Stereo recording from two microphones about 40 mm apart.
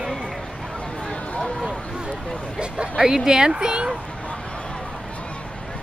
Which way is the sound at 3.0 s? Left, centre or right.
Centre.